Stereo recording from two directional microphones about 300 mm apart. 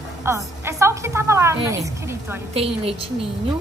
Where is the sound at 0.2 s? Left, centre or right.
Centre.